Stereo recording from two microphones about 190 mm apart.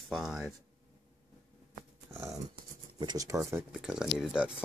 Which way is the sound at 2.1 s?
15° right (ahead or behind).